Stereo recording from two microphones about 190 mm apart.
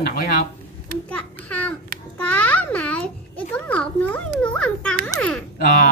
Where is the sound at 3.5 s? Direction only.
10° left (ahead or behind).